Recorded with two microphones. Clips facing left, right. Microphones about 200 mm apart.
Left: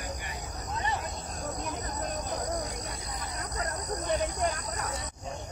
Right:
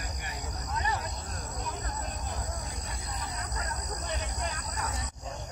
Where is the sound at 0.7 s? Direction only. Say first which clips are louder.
Even; 25° left (ahead or behind).